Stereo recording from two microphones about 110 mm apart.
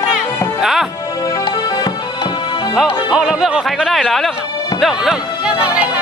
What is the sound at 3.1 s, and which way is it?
Speech, 10° right (ahead or behind).